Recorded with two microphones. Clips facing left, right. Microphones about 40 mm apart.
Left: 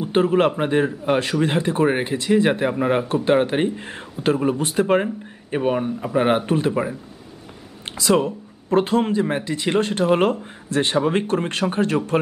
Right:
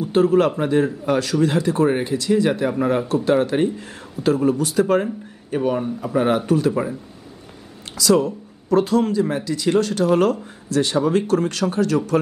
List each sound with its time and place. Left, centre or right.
0.0 s a man's voice: left